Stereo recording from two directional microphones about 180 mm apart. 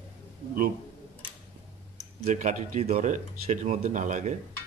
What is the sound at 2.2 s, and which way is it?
A man's voice, 45° right (ahead or behind).